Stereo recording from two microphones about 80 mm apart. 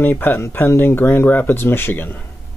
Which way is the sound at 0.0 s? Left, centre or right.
Left.